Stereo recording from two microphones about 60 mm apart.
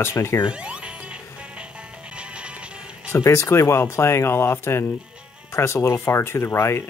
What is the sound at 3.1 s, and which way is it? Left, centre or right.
Speech, left.